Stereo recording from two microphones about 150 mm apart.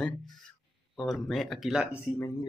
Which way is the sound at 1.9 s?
15° left (ahead or behind).